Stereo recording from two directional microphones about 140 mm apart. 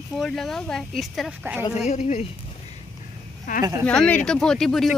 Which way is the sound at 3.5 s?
65° left (ahead or behind).